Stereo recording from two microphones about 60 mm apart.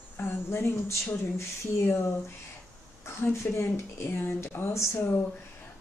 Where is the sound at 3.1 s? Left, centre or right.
Left.